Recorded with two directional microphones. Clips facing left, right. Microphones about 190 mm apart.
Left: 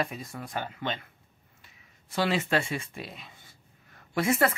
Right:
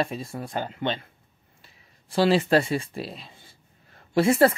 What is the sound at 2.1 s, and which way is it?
Speech, 35° right (ahead or behind).